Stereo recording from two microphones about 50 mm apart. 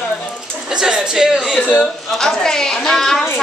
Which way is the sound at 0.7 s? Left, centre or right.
Centre.